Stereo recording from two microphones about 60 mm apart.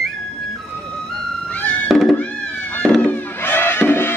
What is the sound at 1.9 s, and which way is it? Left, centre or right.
Music, centre.